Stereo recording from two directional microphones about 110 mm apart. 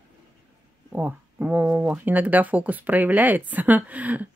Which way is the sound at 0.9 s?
15° right (ahead or behind).